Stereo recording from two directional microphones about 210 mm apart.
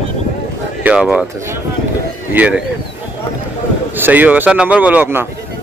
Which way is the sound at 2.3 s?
5° right (ahead or behind).